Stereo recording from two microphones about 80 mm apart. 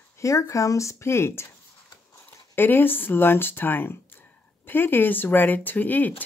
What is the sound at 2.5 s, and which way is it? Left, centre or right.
Speech, left.